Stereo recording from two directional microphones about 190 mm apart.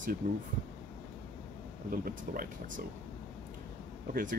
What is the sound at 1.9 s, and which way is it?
Speech, 50° right (ahead or behind).